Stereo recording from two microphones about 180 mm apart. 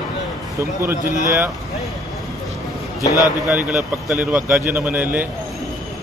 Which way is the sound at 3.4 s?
Centre (ahead or behind).